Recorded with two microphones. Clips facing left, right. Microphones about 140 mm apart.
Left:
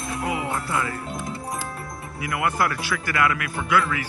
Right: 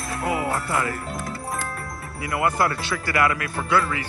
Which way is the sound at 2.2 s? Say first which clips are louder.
Right 2 dB; 30° right (ahead or behind).